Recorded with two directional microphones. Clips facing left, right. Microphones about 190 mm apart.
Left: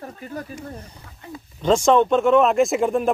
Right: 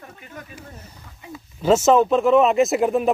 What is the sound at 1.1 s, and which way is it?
Speech, 5° right (ahead or behind).